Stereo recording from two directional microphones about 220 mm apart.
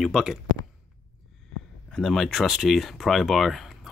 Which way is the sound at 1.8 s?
Centre (ahead or behind).